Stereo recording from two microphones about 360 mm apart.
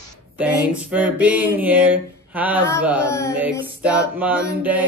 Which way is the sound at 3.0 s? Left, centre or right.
Centre.